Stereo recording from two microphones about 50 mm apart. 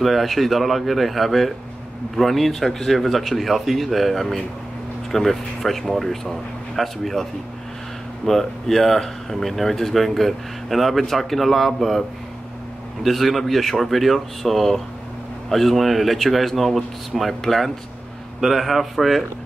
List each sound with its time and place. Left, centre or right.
0.0 s speech: centre
8.3 s speech: centre
13.0 s speech: centre